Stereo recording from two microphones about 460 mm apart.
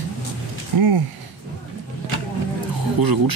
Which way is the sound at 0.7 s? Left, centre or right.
Right.